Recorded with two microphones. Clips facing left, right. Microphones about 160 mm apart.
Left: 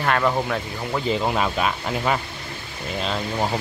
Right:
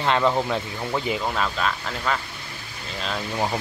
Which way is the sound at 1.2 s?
15° left (ahead or behind).